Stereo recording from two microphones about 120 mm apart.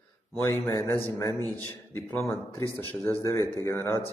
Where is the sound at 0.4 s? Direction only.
20° left (ahead or behind).